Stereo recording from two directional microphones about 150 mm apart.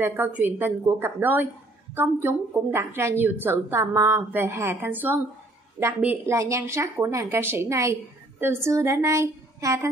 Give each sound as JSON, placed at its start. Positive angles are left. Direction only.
{"t": 0.0, "sound": "speech", "side_deg": -15}